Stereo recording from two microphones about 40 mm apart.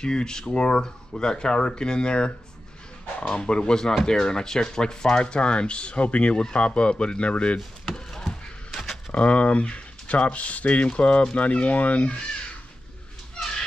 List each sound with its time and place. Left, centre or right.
0.0 s speech: centre
7.5 s chop: centre
9.1 s speech: left